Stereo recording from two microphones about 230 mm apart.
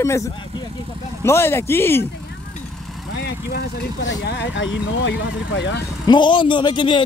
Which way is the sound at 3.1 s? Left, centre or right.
Left.